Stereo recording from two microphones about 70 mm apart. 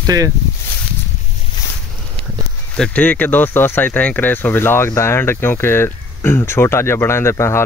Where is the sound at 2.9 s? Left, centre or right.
Left.